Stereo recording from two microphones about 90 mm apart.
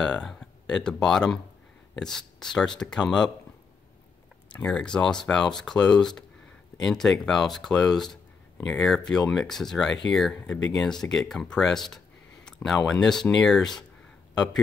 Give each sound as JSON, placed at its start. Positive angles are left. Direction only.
{"t": 0.0, "sound": "speech", "side_deg": 10}
{"t": 4.5, "sound": "a sound", "side_deg": 20}
{"t": 4.7, "sound": "speech", "side_deg": 10}